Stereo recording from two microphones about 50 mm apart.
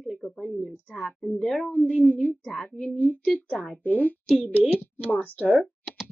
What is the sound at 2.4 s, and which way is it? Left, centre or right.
A woman's voice, centre.